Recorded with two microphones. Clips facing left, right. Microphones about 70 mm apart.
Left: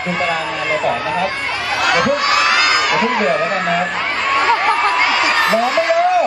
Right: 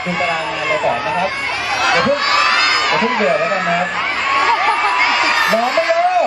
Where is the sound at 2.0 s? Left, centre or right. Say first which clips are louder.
Even; centre.